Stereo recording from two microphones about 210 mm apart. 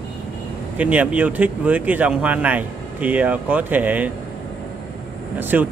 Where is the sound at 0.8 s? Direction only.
5° right (ahead or behind).